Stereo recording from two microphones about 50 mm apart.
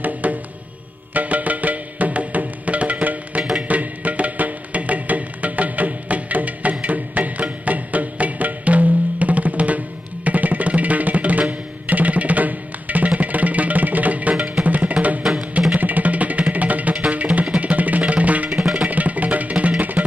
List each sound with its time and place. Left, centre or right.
0.0 s music: right